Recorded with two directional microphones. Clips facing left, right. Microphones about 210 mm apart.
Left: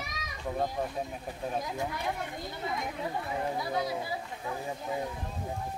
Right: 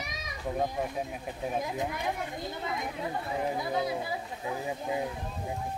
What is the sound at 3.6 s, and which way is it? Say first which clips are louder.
Speech: right 1 dB; 25° right (ahead or behind).